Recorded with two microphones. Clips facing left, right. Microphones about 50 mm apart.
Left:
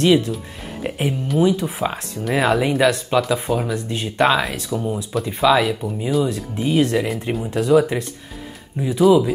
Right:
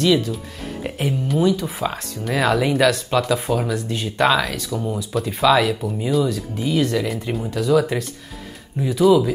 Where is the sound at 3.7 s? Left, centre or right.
Centre.